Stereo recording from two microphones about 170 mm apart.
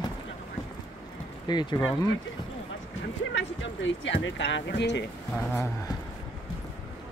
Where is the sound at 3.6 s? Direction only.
90° left.